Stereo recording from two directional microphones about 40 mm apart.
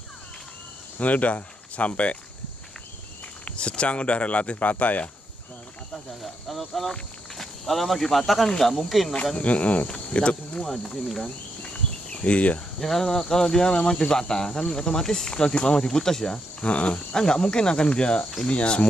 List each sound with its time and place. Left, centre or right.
0.9 s speech: left
3.5 s speech: left
6.2 s speech: centre
8.5 s cricket: centre
8.7 s speech: centre
9.4 s speech: left
9.8 s cricket: left
10.6 s cricket: centre
11.2 s cricket: left
12.8 s cricket: centre
16.6 s cricket: left
17.1 s cricket: centre